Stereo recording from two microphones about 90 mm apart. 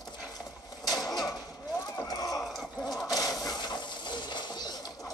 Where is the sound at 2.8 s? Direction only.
45° left (ahead or behind).